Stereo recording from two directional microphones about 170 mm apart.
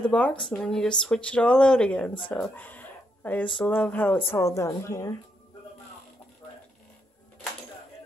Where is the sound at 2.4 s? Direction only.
10° left (ahead or behind).